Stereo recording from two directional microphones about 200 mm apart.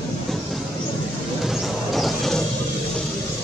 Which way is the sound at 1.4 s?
Centre (ahead or behind).